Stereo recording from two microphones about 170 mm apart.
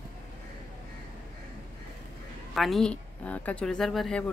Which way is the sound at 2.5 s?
Centre (ahead or behind).